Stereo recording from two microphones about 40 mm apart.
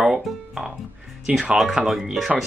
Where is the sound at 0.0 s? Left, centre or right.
Centre.